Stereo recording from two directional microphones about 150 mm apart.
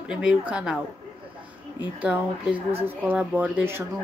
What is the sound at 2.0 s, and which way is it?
Speech, 10° right (ahead or behind).